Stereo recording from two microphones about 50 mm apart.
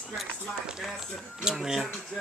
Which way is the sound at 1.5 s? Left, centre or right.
Centre.